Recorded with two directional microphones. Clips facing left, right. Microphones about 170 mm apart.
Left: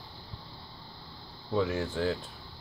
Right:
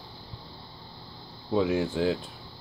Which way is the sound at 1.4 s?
20° right (ahead or behind).